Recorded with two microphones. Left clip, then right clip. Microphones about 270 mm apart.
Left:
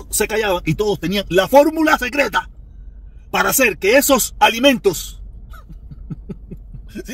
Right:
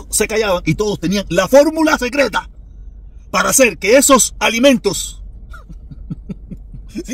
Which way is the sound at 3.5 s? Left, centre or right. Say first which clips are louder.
Right 4 dB; centre.